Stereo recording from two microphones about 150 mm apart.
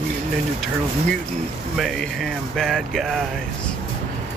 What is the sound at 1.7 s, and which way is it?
Speech, centre (ahead or behind).